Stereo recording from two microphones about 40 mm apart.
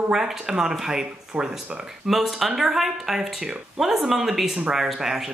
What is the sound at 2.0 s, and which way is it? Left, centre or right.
A woman's voice, centre.